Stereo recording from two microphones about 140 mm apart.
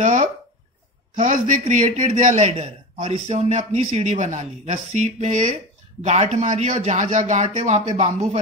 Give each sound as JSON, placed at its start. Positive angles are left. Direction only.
{"t": 0.0, "sound": "a man's voice", "side_deg": -65}